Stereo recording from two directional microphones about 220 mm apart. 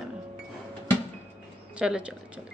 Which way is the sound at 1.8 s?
5° right (ahead or behind).